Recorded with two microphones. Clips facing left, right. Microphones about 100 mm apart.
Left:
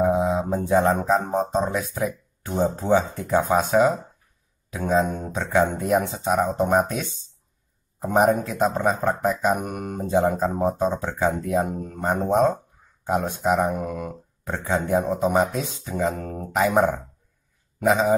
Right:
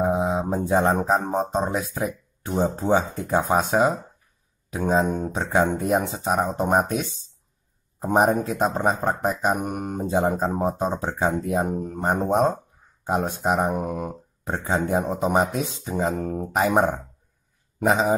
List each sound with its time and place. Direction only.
0.0 s mantra: 20° right (ahead or behind)
1.3 s speech: 15° right (ahead or behind)
5.0 s speech: 20° right (ahead or behind)
8.0 s speech: 25° right (ahead or behind)
10.4 s speech: 10° right (ahead or behind)
11.1 s speech: 25° right (ahead or behind)
17.8 s speech: 25° right (ahead or behind)